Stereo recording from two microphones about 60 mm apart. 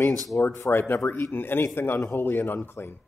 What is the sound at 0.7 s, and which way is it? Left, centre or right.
Speech, left.